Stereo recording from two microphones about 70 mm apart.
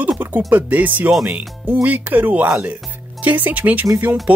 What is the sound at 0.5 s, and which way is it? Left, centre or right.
Speech, right.